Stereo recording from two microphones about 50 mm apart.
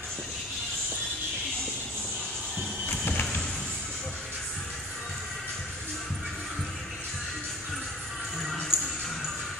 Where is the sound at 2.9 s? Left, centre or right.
Left.